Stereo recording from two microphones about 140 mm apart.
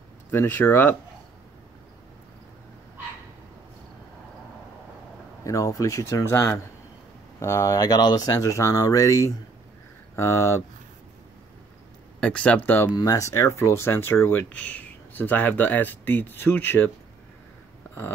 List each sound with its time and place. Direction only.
0.3 s speech: 15° left (ahead or behind)
5.4 s speech: 20° left (ahead or behind)
12.2 s speech: 10° left (ahead or behind)
12.9 s speech: 25° left (ahead or behind)